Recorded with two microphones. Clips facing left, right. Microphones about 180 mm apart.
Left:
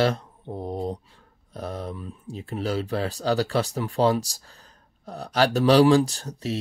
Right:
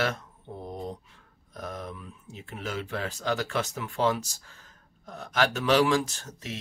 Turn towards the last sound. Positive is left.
turn(degrees=35)  # may be behind; listen again after turning